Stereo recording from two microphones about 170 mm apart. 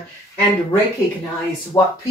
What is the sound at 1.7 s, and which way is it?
Speech, 25° left (ahead or behind).